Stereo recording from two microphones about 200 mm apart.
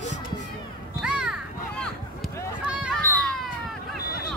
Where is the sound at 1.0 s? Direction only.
5° right (ahead or behind).